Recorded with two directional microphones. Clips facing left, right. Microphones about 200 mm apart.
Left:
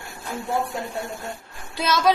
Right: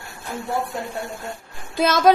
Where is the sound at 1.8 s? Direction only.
50° right (ahead or behind).